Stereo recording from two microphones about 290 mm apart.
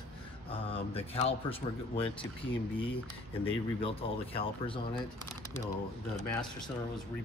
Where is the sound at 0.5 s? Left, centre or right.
Centre.